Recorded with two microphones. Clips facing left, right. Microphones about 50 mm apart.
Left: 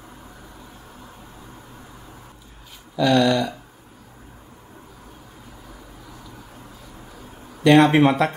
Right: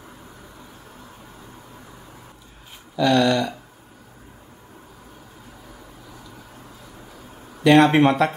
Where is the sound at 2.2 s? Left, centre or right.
Centre.